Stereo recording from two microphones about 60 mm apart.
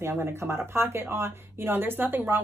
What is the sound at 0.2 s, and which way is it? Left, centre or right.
A woman's voice, right.